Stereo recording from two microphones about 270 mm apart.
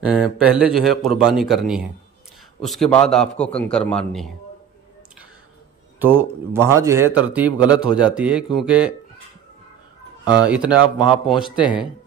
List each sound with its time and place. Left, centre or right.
0.0 s a man's voice: centre
5.9 s a man's voice: centre
10.2 s speech: centre
10.5 s a man's voice: centre
10.8 s a man's voice: centre
11.2 s a man's voice: centre